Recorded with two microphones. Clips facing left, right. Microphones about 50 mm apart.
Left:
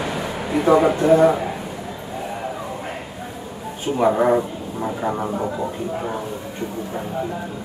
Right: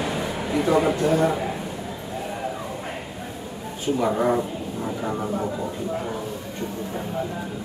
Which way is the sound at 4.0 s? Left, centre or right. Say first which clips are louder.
Left 6 dB; left.